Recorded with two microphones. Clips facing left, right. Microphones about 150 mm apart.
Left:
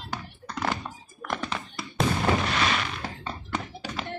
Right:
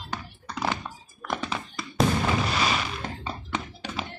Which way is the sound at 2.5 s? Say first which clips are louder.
Even; 5° right (ahead or behind).